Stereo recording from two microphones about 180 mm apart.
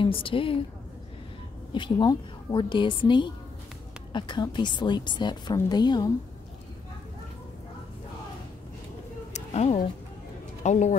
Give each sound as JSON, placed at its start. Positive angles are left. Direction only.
{"t": 0.0, "sound": "a woman's voice", "side_deg": 30}
{"t": 1.7, "sound": "a woman's voice", "side_deg": 25}
{"t": 9.3, "sound": "a sound", "side_deg": 35}
{"t": 10.6, "sound": "a man's voice", "side_deg": 40}